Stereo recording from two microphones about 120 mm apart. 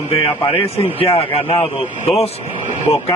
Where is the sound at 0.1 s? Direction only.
55° left (ahead or behind).